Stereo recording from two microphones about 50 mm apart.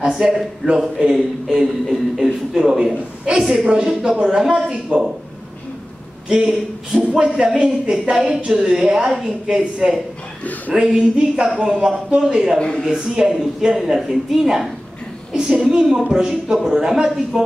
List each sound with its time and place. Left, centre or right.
0.2 s speech: centre
6.2 s speech: centre
12.5 s speech: centre
12.8 s speech: centre
15.7 s speech: centre